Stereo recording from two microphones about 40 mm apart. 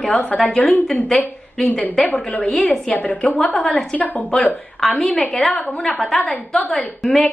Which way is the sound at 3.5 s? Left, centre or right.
Centre.